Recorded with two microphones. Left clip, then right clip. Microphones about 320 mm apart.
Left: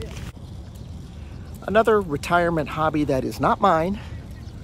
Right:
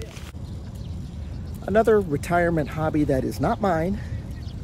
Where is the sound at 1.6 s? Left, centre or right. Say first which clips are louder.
Left 1 dB; centre.